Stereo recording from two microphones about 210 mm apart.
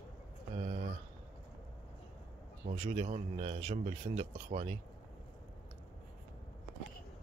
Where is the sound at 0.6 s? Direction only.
35° right (ahead or behind).